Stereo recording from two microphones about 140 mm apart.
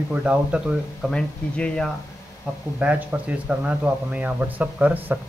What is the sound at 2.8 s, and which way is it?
Speech, 10° right (ahead or behind).